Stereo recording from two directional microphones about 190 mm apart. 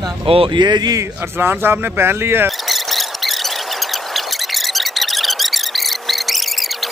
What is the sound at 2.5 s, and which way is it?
Squeal, centre (ahead or behind).